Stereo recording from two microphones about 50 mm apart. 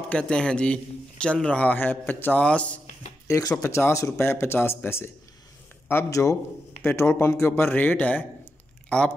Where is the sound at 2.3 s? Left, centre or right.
Left.